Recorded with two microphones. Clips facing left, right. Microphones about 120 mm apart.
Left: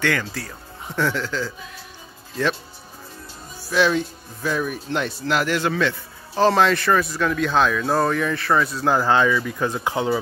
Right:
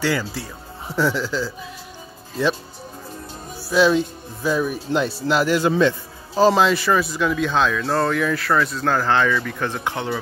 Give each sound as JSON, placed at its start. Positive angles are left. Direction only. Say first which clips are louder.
{"t": 0.9, "sound": "speech", "louder": "right 2 dB", "side_deg": -10}
{"t": 3.7, "sound": "speech", "louder": "right 3 dB", "side_deg": -15}
{"t": 6.3, "sound": "a man's voice", "louder": "right 1 dB", "side_deg": -10}
{"t": 8.6, "sound": "speech", "louder": "left 1 dB", "side_deg": 10}